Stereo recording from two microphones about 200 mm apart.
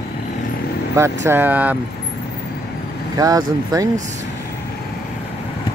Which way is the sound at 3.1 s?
20° right (ahead or behind).